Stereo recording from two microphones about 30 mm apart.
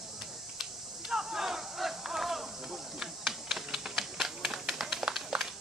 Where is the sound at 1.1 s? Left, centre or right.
Centre.